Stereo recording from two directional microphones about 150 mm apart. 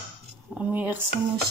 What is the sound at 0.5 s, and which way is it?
Speech, 10° right (ahead or behind).